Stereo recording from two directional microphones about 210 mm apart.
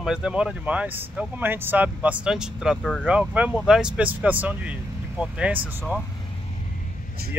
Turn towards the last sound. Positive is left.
turn(degrees=-45)  # may be behind; listen again after turning